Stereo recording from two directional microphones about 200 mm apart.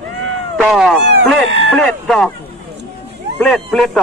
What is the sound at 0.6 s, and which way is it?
Speech, centre (ahead or behind).